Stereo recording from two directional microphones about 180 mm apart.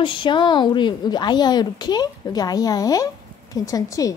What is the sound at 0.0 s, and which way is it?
A woman's voice, 25° left (ahead or behind).